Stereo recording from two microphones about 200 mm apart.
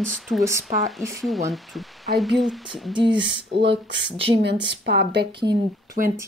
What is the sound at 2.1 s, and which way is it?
Speech, centre (ahead or behind).